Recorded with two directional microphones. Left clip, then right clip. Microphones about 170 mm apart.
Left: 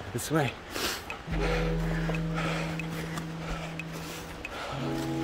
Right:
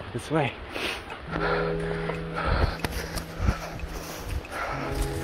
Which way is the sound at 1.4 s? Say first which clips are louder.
Right 5 dB; 5° left (ahead or behind).